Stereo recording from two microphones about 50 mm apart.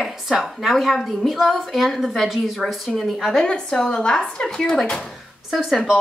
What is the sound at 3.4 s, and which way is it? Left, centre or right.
A woman's voice, centre.